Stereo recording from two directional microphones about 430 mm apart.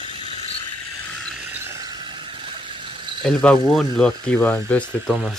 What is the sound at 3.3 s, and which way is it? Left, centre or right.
Speech, centre.